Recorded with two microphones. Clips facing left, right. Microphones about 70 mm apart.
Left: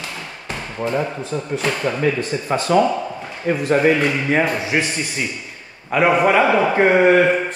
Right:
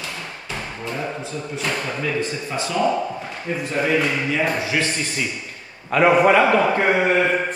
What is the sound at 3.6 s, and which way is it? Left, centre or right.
Speech, left.